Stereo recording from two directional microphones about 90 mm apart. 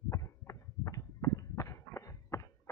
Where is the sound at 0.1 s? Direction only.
35° left (ahead or behind).